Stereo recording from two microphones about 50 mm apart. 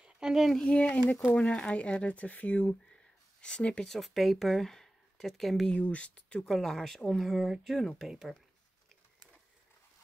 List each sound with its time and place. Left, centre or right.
0.0 s a sound: centre
0.7 s speech: left
3.8 s speech: centre
5.8 s speech: left
6.5 s speech: centre